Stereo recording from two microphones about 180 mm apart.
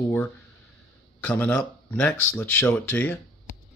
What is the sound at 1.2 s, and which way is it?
Speech, 10° left (ahead or behind).